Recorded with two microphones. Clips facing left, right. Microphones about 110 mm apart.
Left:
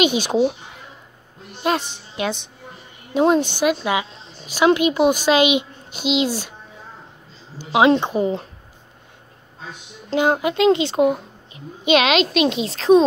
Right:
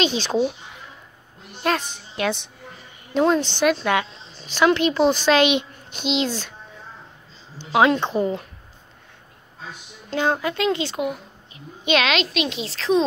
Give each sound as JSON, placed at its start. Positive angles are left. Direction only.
{"t": 0.0, "sound": "a woman's voice", "side_deg": 15}
{"t": 1.6, "sound": "a woman's voice", "side_deg": 5}
{"t": 7.5, "sound": "a woman's voice", "side_deg": 10}
{"t": 10.1, "sound": "speech", "side_deg": 15}
{"t": 11.0, "sound": "a sound", "side_deg": 35}
{"t": 11.8, "sound": "a woman's voice", "side_deg": 15}
{"t": 12.3, "sound": "a woman's voice", "side_deg": 30}